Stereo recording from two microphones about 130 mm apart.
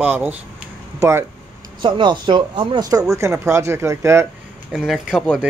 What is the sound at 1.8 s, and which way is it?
Speech, 40° right (ahead or behind).